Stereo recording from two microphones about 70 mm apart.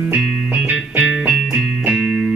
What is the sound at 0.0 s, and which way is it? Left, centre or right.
Music, right.